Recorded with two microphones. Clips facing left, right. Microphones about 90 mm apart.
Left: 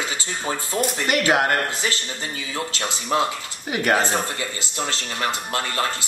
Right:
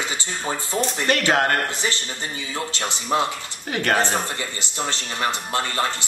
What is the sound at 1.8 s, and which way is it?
Speech, 30° right (ahead or behind).